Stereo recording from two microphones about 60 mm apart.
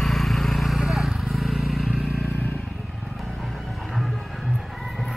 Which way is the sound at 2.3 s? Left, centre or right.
Left.